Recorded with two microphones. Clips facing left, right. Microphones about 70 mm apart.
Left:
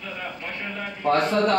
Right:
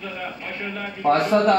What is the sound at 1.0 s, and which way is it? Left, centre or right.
Speech, centre.